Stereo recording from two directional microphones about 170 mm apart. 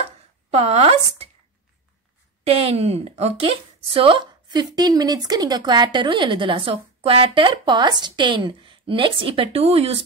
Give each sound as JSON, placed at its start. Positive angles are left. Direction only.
{"t": 0.5, "sound": "a woman's voice", "side_deg": -35}
{"t": 2.4, "sound": "a woman's voice", "side_deg": -35}